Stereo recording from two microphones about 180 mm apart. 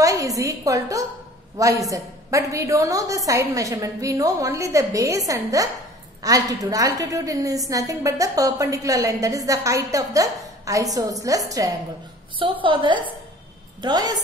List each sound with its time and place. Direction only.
0.0 s a woman's voice: 20° right (ahead or behind)